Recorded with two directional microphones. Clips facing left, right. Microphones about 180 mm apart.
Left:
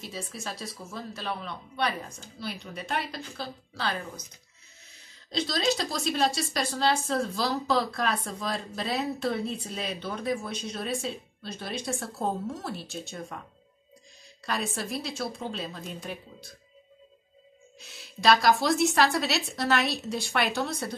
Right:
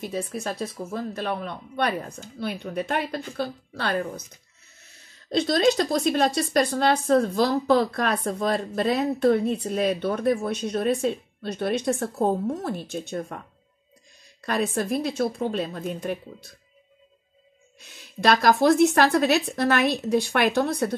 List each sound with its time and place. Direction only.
0.0 s speech: 55° right (ahead or behind)
5.3 s speech: 55° right (ahead or behind)
14.4 s speech: 55° right (ahead or behind)
17.7 s speech: 55° right (ahead or behind)